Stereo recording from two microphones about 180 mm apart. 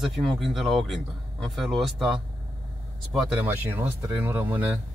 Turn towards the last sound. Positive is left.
turn(degrees=-10)  # may be behind; listen again after turning